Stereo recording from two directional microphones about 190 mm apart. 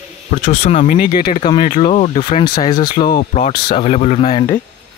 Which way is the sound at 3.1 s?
35° left (ahead or behind).